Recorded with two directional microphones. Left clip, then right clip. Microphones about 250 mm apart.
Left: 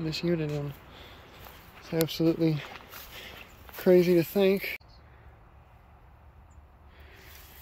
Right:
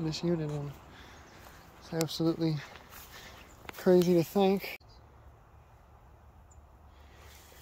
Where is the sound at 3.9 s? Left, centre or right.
Centre.